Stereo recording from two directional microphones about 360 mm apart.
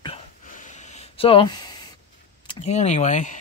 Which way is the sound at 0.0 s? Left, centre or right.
Centre.